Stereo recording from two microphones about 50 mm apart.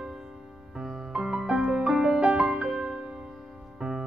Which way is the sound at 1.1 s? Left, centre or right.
Centre.